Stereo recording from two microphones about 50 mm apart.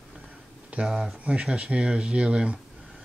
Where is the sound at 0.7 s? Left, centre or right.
Centre.